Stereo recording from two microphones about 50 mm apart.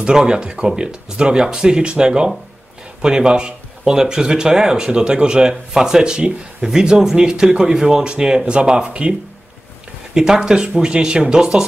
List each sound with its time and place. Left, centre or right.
0.0 s speech: centre
10.1 s speech: centre